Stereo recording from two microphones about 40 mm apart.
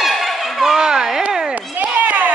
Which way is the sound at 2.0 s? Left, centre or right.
Right.